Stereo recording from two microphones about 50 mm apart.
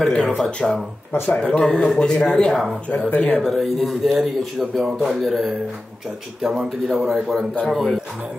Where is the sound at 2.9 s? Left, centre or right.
Left.